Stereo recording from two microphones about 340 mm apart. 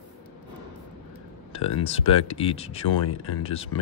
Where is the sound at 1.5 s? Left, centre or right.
Centre.